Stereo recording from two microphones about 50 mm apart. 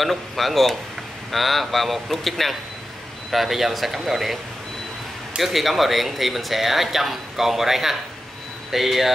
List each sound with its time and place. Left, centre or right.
0.0 s speech: centre
5.4 s speech: centre